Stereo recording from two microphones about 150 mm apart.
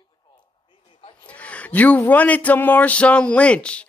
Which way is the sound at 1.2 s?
10° left (ahead or behind).